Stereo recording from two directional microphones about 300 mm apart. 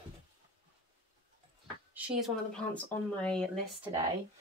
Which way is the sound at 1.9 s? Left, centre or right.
Centre.